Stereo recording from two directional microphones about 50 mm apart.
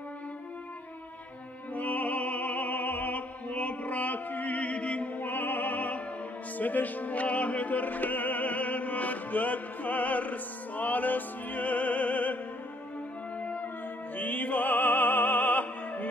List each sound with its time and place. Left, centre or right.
1.7 s music: left
13.4 s music: left